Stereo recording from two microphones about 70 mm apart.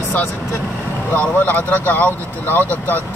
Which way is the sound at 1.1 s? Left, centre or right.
Left.